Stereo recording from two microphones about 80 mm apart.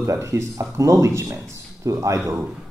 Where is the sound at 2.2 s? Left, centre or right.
Right.